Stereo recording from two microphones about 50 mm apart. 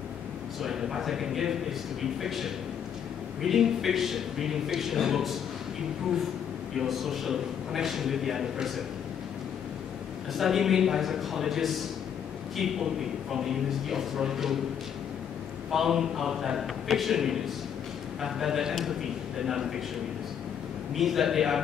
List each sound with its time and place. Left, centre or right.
0.6 s a man's voice: centre
6.8 s a man's voice: centre
10.3 s a man's voice: centre
15.7 s a man's voice: centre
20.9 s a man's voice: centre